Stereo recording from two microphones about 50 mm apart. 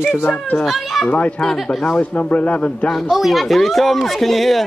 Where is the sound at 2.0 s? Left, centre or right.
Left.